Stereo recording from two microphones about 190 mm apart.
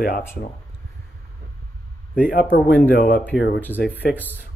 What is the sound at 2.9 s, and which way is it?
Speech, 50° left (ahead or behind).